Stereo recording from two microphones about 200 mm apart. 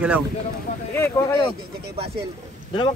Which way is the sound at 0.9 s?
10° left (ahead or behind).